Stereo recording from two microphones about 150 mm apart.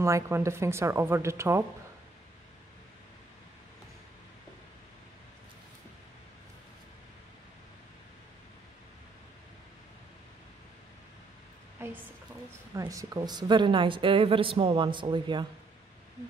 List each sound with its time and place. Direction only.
0.0 s speech: 20° right (ahead or behind)
11.8 s a sound: 15° right (ahead or behind)
12.7 s a woman's voice: 20° right (ahead or behind)